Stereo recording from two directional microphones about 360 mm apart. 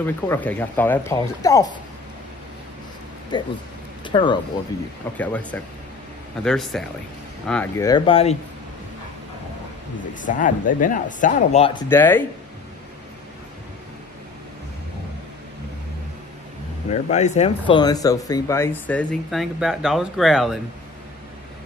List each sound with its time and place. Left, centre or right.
0.0 s speech: centre
3.3 s speech: centre
10.1 s speech: left; by 12.3 s centre
16.9 s speech: centre